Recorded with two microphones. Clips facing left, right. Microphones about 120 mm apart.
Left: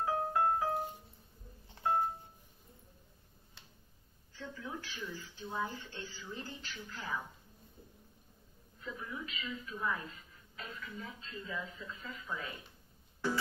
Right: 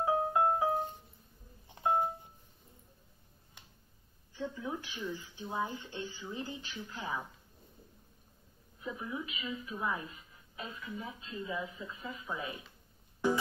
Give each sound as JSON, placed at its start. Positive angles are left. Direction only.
{"t": 0.0, "sound": "music", "side_deg": -20}
{"t": 1.8, "sound": "music", "side_deg": -15}
{"t": 4.4, "sound": "speech", "side_deg": -20}
{"t": 8.7, "sound": "speech", "side_deg": -20}
{"t": 13.2, "sound": "music", "side_deg": -15}